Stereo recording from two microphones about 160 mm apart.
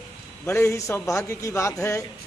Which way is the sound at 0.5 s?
20° left (ahead or behind).